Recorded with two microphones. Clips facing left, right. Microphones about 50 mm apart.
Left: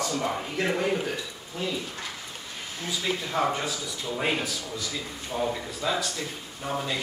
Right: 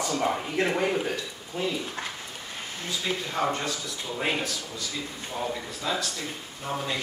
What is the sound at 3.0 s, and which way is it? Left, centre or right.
A man's voice, centre.